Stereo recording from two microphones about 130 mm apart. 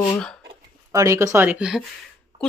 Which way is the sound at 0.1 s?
5° left (ahead or behind).